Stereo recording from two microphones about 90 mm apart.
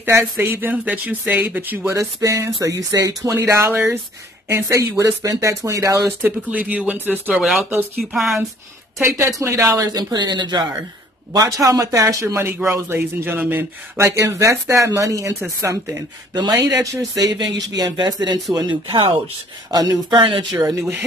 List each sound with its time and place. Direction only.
0.0 s speech: 25° right (ahead or behind)
1.9 s speech: 30° right (ahead or behind)
6.2 s speech: 15° right (ahead or behind)
7.3 s speech: centre (ahead or behind)
9.0 s speech: 35° right (ahead or behind); by 10.7 s 55° right (ahead or behind)
11.3 s speech: 40° right (ahead or behind)
18.9 s speech: 70° right (ahead or behind)
19.7 s speech: 45° right (ahead or behind)
20.1 s speech: 65° right (ahead or behind)